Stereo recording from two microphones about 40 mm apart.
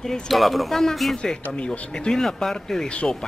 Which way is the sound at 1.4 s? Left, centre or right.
Left.